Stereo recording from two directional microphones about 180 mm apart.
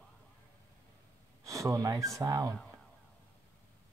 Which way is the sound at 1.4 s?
20° right (ahead or behind).